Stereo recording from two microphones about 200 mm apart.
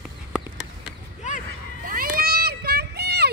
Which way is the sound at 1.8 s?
45° right (ahead or behind).